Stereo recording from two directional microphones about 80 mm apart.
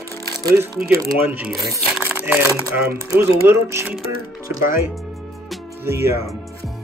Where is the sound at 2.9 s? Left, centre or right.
Right.